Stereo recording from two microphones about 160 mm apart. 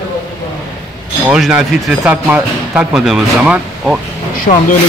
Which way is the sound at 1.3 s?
5° right (ahead or behind).